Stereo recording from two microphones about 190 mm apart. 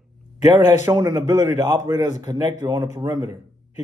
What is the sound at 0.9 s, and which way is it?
A man's voice, 15° right (ahead or behind).